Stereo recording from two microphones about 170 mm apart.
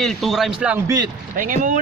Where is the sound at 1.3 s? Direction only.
50° right (ahead or behind).